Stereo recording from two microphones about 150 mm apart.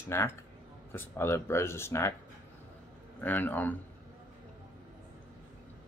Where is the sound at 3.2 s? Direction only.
10° left (ahead or behind).